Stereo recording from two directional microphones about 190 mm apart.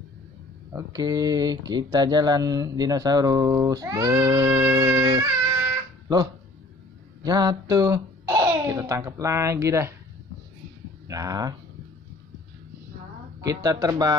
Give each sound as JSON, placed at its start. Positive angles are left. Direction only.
{"t": 0.7, "sound": "speech", "side_deg": -20}
{"t": 7.2, "sound": "speech", "side_deg": -20}
{"t": 11.1, "sound": "speech", "side_deg": -20}
{"t": 13.4, "sound": "speech", "side_deg": -20}